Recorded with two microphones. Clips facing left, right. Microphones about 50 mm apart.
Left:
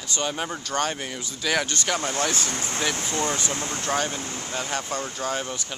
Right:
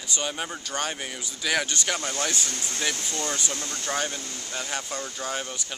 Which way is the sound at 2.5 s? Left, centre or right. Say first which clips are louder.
Left 3 dB; left.